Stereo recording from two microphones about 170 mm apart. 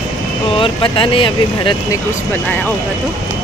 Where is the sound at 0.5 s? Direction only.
30° left (ahead or behind).